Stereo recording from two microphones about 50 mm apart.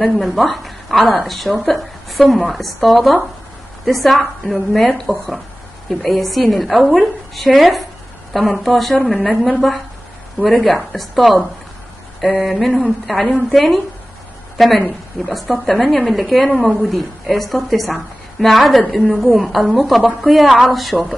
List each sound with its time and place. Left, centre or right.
0.0 s a woman's voice: centre
15.2 s a woman's voice: centre
20.9 s speech: left